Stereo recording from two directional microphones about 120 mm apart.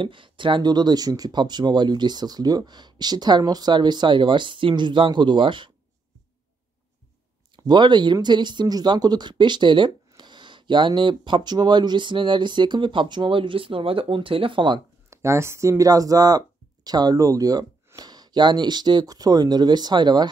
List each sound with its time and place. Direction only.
0.0 s speech: 45° right (ahead or behind)
7.5 s speech: 40° right (ahead or behind)
15.0 s speech: 25° right (ahead or behind)